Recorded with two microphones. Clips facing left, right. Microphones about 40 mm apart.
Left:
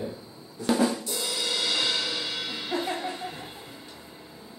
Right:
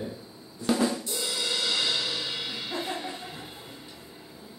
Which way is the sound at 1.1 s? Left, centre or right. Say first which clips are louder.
Left 1 dB; left.